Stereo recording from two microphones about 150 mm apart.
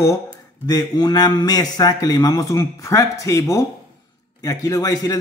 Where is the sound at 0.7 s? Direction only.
25° left (ahead or behind).